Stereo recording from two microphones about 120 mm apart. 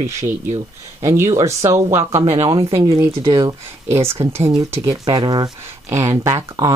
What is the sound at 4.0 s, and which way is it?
Speech, 55° right (ahead or behind).